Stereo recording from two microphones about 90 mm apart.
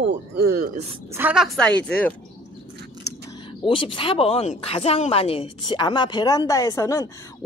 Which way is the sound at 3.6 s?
75° left (ahead or behind).